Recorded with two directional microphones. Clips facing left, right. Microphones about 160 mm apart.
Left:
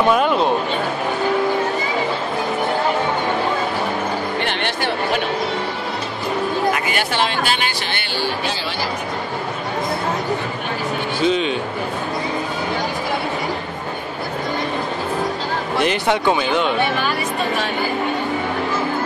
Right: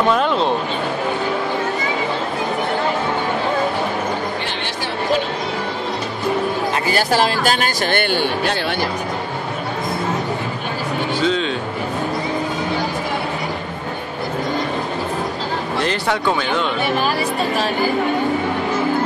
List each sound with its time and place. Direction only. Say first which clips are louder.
0.1 s speech: left 1 dB; 10° left (ahead or behind)
6.7 s speech: right 3 dB; 35° right (ahead or behind); by 8.5 s 55° right (ahead or behind)
11.2 s speech: left 3 dB; 15° left (ahead or behind)
15.8 s speech: left 3 dB; 15° left (ahead or behind)